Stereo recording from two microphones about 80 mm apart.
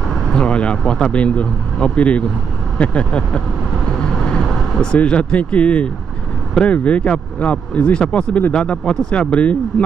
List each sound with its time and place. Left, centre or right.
0.1 s speech: centre